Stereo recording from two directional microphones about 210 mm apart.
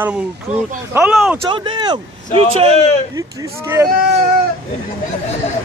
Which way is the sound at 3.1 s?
15° right (ahead or behind).